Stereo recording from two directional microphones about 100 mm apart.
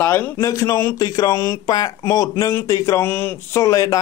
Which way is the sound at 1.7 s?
40° left (ahead or behind).